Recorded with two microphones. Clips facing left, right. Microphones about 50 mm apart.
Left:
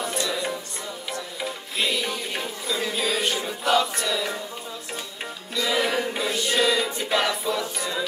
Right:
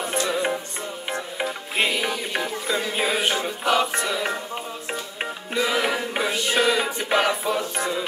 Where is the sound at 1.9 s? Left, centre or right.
Right.